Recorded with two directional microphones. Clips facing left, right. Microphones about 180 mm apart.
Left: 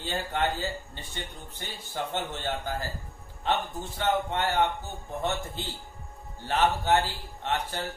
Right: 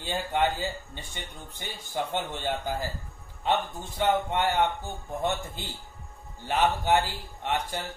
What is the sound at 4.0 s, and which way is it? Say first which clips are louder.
Speech: right 2 dB; 15° right (ahead or behind).